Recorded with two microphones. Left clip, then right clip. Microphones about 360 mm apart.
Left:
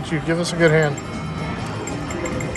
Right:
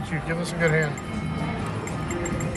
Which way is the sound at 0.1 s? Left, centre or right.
Centre.